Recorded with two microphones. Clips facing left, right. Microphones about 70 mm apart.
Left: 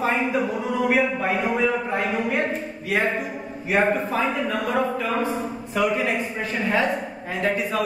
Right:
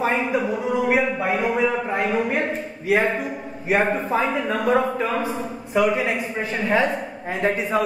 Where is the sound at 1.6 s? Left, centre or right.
Centre.